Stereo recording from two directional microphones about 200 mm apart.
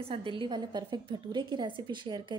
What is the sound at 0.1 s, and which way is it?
A woman's voice, 25° right (ahead or behind).